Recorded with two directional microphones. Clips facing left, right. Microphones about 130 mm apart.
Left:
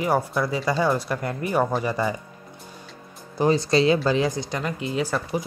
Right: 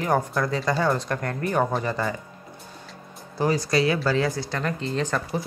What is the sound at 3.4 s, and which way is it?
Speech, 25° left (ahead or behind).